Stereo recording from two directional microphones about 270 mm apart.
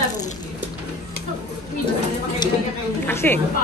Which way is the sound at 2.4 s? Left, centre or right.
Centre.